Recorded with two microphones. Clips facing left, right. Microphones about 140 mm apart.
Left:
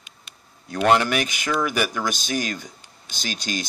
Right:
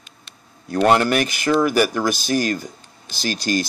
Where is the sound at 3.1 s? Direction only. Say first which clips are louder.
Right 7 dB; 5° right (ahead or behind).